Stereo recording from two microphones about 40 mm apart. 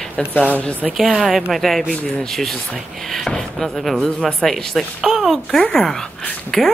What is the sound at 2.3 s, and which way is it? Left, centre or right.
Speech, centre.